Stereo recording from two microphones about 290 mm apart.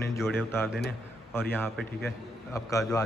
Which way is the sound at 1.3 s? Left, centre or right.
Centre.